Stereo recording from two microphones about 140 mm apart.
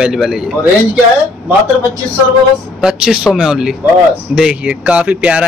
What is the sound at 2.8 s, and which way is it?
Speech, 5° right (ahead or behind).